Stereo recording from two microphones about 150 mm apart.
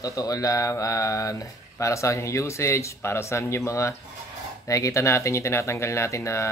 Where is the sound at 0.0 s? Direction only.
25° left (ahead or behind).